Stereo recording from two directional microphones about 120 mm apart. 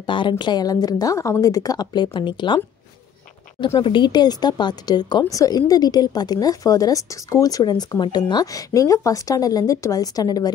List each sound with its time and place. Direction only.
0.0 s a woman's voice: 40° left (ahead or behind)
3.6 s a woman's voice: 45° left (ahead or behind)